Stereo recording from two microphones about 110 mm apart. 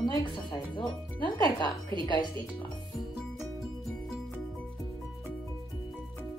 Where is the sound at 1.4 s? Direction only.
40° left (ahead or behind).